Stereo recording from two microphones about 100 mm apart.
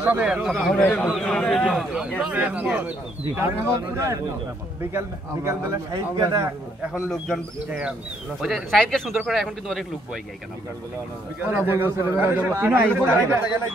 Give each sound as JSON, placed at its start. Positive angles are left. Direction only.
{"t": 0.0, "sound": "a man's voice", "side_deg": -10}
{"t": 2.3, "sound": "a man's voice", "side_deg": -15}
{"t": 6.9, "sound": "a man's voice", "side_deg": 0}
{"t": 11.4, "sound": "a man's voice", "side_deg": -20}